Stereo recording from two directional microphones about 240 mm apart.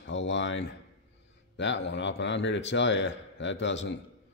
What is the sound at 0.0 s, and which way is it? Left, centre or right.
Speech, left.